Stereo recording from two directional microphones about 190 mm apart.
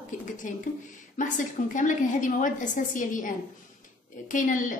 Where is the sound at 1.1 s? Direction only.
40° left (ahead or behind).